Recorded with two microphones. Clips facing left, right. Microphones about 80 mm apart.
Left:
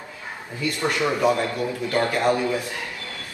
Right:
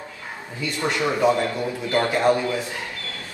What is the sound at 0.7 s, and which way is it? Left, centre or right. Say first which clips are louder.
A man's voice: right 1 dB; right.